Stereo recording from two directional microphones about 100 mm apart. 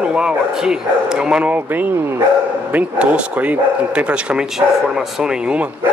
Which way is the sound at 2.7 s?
10° right (ahead or behind).